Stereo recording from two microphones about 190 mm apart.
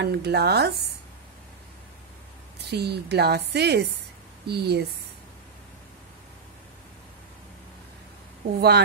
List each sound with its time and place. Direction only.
0.0 s a woman's voice: 60° right (ahead or behind)
2.7 s a woman's voice: 60° right (ahead or behind)
8.5 s a woman's voice: 60° right (ahead or behind)